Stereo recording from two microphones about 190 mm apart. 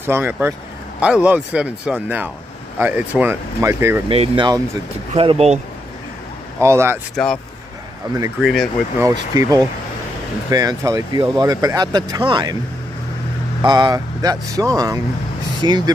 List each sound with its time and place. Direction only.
0.0 s speech: 10° right (ahead or behind)
4.1 s speech: 30° right (ahead or behind)
6.6 s speech: 15° right (ahead or behind)
8.4 s speech: centre (ahead or behind)
9.0 s speech: 15° right (ahead or behind)
13.6 s speech: 20° right (ahead or behind)